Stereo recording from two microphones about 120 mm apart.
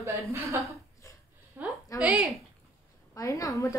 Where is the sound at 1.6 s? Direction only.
15° right (ahead or behind).